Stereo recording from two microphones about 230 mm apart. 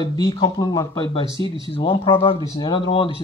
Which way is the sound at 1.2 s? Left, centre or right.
Right.